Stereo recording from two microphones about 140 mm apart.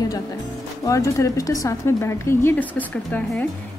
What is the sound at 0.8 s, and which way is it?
Speech, 20° left (ahead or behind).